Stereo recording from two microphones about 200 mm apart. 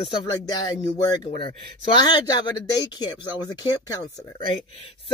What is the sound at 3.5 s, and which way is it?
Speech, 20° left (ahead or behind).